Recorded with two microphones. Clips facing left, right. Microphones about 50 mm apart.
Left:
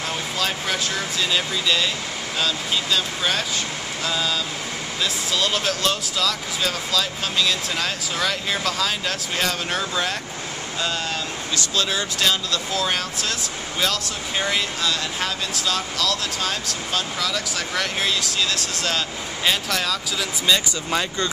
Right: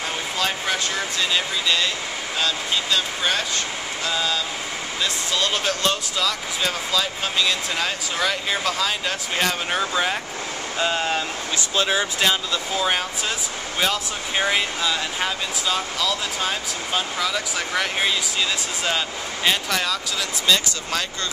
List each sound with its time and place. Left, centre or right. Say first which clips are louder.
1.3 s speech: left 1 dB; centre
10.8 s speech: right 4 dB; right; by 20.0 s centre
20.4 s speech: even; centre